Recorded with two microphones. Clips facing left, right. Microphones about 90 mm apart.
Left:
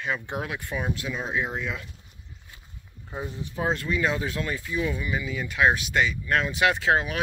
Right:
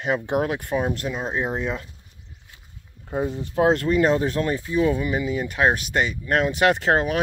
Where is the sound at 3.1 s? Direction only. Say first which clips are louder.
Right 8 dB; 35° right (ahead or behind).